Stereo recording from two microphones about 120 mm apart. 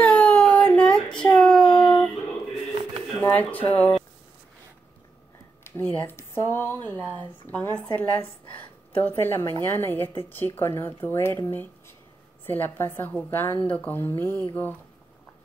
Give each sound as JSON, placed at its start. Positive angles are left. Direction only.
{"t": 0.0, "sound": "baby cry", "side_deg": 10}
{"t": 1.3, "sound": "a sound", "side_deg": 10}
{"t": 3.2, "sound": "speech", "side_deg": 15}
{"t": 5.6, "sound": "a woman's voice", "side_deg": 20}